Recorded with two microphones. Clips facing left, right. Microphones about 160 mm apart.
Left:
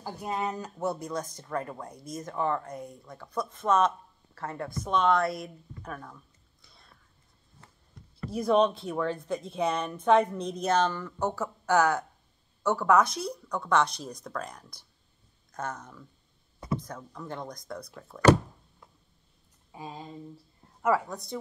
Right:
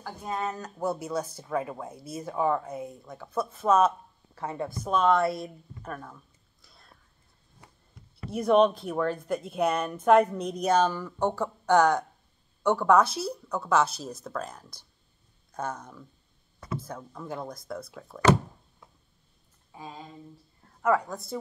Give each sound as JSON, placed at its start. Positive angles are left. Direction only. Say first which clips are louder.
{"t": 0.0, "sound": "speech", "louder": "even", "side_deg": 15}
{"t": 4.6, "sound": "speech", "louder": "right 1 dB", "side_deg": -5}
{"t": 8.4, "sound": "speech", "louder": "right 3 dB", "side_deg": -5}
{"t": 11.1, "sound": "a woman's voice", "louder": "right 3 dB", "side_deg": 5}
{"t": 12.9, "sound": "speech", "louder": "even", "side_deg": -5}
{"t": 19.7, "sound": "a sound", "louder": "left 1 dB", "side_deg": 15}
{"t": 20.8, "sound": "speech", "louder": "right 1 dB", "side_deg": 5}